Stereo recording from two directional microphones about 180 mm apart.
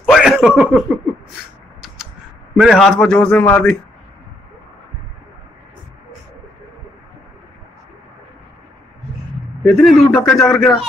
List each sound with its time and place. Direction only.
0.0 s a sound: centre (ahead or behind)
2.5 s a man's voice: centre (ahead or behind)
9.7 s a man's voice: centre (ahead or behind)